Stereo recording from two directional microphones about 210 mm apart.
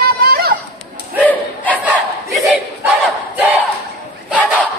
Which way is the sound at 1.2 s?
5° left (ahead or behind).